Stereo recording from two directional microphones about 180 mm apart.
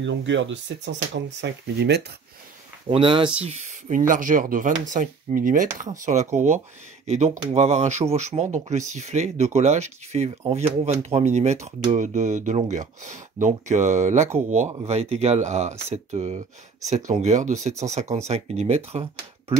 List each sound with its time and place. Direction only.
0.0 s speech: 90° right; by 2.0 s 75° right (ahead or behind)
2.9 s speech: 25° right (ahead or behind)
3.4 s speech: 40° right (ahead or behind)